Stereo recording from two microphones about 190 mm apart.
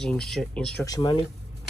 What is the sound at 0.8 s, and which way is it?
Speech, 20° left (ahead or behind).